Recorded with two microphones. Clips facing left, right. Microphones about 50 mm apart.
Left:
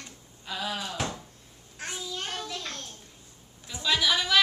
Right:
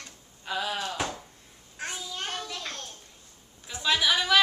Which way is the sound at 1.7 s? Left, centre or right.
Centre.